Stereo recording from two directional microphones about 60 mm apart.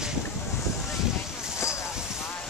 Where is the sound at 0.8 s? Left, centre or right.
Centre.